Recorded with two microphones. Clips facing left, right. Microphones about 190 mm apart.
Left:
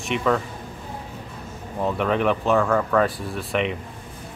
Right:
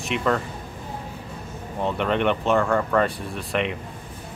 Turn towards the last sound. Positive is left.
turn(degrees=0)  # may be behind; listen again after turning